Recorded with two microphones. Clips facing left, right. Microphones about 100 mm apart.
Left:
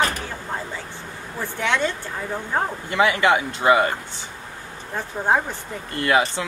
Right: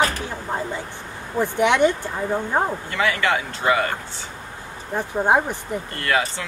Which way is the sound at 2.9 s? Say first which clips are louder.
Left 6 dB; 20° left (ahead or behind).